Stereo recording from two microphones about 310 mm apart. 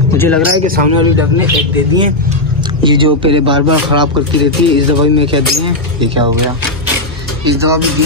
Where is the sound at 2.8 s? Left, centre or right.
Centre.